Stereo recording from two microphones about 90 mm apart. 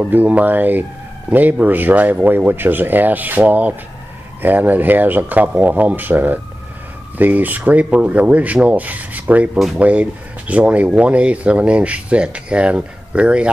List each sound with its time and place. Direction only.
0.0 s speech: 15° right (ahead or behind)